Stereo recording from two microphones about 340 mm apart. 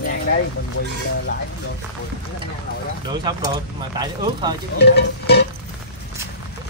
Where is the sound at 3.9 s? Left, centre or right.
Centre.